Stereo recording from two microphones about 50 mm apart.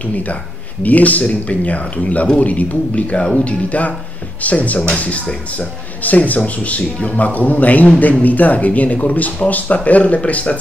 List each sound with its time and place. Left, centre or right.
0.0 s speech: left